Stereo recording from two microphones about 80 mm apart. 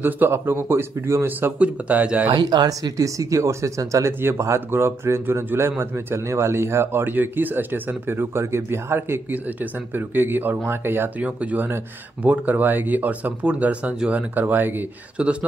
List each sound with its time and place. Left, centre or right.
0.0 s speech: right
1.6 s speech: centre
2.3 s speech: right; by 14.2 s centre
14.3 s speech: right